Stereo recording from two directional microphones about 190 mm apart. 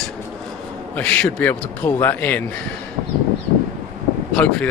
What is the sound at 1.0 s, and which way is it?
A man's voice, 5° left (ahead or behind).